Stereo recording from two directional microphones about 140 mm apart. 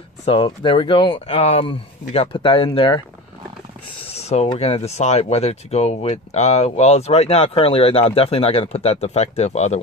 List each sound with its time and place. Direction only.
0.2 s speech: 40° left (ahead or behind)
4.1 s speech: 50° left (ahead or behind)